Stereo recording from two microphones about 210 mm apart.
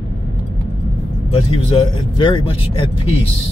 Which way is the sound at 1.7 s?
25° left (ahead or behind).